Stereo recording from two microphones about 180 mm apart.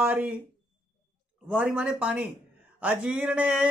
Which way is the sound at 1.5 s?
5° right (ahead or behind).